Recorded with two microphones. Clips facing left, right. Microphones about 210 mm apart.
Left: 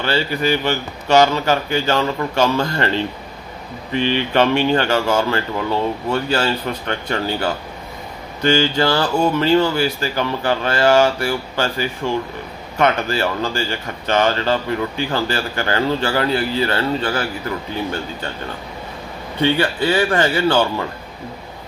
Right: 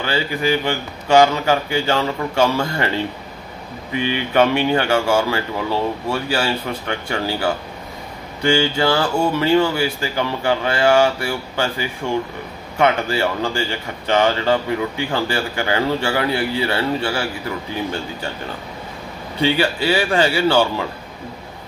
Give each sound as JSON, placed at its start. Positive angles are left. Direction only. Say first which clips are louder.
{"t": 0.0, "sound": "speech", "louder": "left 1 dB", "side_deg": -15}
{"t": 19.4, "sound": "speech", "louder": "left 1 dB", "side_deg": -10}